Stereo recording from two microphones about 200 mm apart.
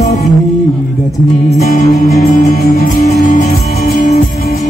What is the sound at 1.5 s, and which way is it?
Music, 45° left (ahead or behind).